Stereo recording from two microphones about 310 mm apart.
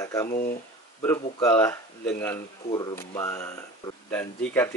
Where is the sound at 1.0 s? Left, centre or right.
Centre.